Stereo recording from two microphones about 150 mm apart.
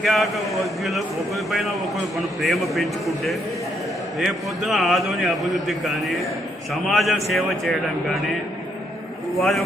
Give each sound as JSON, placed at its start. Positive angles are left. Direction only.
{"t": 0.0, "sound": "a man's voice", "side_deg": 0}
{"t": 9.3, "sound": "a man's voice", "side_deg": 0}